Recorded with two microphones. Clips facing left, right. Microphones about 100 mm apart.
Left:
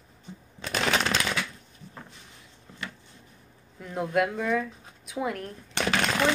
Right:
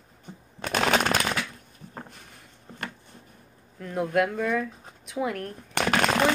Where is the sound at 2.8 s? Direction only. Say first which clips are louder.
Right 2 dB; 55° right (ahead or behind).